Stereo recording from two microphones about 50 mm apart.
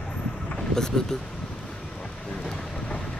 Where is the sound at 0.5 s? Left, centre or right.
Centre.